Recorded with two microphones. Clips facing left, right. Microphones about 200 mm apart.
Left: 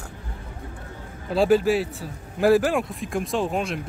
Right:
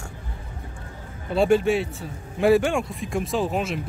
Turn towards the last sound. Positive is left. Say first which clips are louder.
# even
turn(degrees=0)  # may be behind; listen again after turning